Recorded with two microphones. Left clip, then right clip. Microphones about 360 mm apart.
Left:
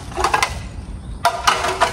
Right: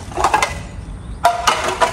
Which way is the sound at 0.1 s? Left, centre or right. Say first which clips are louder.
Right 2 dB; centre.